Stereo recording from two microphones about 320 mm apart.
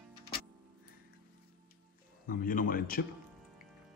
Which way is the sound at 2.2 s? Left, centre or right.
Left.